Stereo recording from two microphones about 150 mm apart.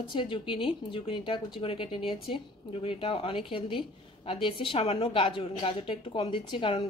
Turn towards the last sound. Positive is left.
turn(degrees=35)  # may be behind; listen again after turning